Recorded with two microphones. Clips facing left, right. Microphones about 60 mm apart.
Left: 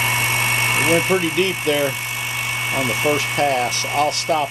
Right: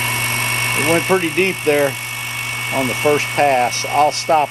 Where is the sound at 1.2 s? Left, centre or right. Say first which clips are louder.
Right 3 dB; right.